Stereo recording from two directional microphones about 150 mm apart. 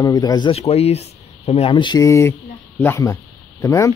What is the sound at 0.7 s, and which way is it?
Speech, 45° left (ahead or behind).